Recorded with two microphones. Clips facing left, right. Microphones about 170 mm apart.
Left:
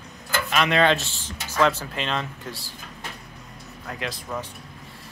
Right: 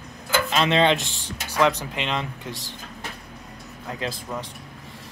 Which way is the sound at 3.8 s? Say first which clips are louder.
Right 2 dB; 30° right (ahead or behind).